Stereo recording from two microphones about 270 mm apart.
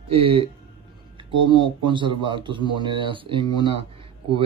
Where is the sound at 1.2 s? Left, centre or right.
Centre.